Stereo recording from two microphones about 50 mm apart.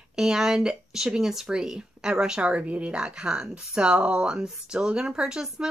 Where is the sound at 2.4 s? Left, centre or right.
Right.